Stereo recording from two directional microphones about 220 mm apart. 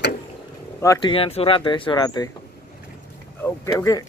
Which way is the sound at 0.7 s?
20° left (ahead or behind).